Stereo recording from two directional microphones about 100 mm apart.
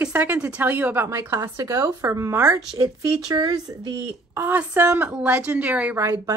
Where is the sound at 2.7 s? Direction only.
40° right (ahead or behind).